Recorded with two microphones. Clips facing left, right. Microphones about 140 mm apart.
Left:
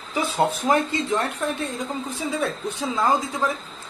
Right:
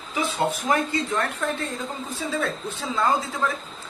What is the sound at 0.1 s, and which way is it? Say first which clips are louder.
Speech: left 2 dB; 30° left (ahead or behind).